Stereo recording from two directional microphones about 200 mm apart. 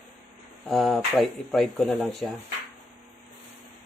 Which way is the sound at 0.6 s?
Centre (ahead or behind).